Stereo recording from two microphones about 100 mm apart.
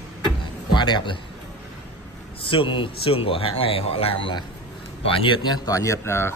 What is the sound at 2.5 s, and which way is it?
Speech, 60° left (ahead or behind).